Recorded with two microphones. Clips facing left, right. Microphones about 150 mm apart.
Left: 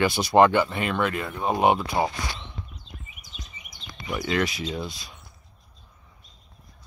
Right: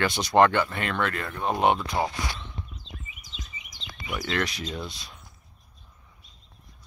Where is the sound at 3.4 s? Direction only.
90° right.